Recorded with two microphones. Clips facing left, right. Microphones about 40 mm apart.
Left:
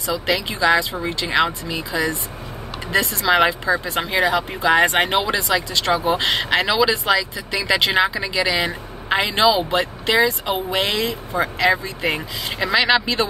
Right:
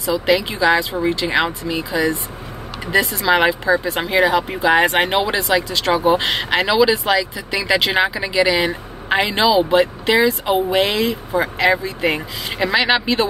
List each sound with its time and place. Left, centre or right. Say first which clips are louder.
0.3 s speech: right 2 dB; centre
3.3 s speech: even; centre
5.5 s speech: right 3 dB; centre